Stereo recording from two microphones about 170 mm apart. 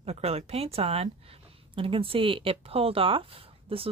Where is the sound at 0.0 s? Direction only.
35° right (ahead or behind).